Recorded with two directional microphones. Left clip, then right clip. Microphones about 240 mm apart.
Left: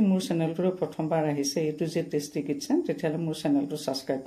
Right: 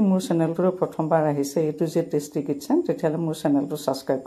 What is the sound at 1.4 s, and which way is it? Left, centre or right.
Speech, right.